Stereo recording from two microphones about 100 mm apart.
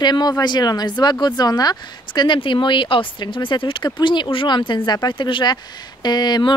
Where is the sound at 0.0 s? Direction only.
45° left (ahead or behind).